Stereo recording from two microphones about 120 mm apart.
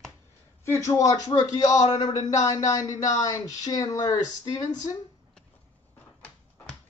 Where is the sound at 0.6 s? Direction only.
25° left (ahead or behind).